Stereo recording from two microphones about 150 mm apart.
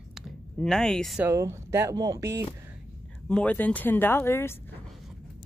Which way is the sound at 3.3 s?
10° left (ahead or behind).